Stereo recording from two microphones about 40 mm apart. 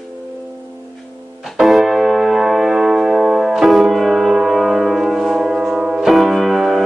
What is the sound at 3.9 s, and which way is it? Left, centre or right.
Music, centre.